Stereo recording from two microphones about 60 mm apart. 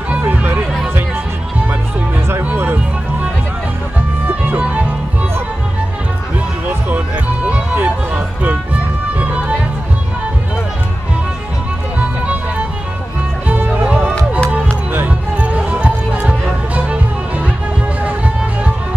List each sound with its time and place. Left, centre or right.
0.1 s music: right
2.5 s music: right
4.5 s music: right
7.7 s music: right
9.2 s music: centre
13.5 s music: right
14.9 s music: right